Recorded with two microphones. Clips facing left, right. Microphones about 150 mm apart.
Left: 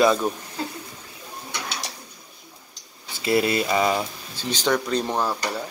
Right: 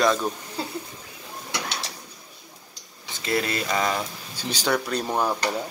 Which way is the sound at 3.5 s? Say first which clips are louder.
Left 4 dB; 10° left (ahead or behind).